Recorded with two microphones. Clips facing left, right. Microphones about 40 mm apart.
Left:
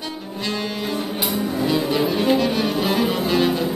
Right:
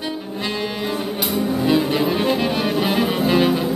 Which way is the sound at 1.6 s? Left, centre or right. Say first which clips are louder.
Right 1 dB; centre.